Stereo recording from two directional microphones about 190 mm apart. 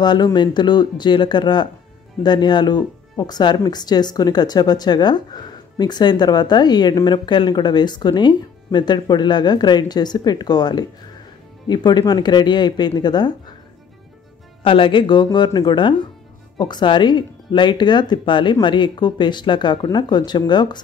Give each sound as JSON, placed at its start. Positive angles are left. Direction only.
{"t": 0.0, "sound": "speech", "side_deg": 20}
{"t": 14.6, "sound": "speech", "side_deg": 25}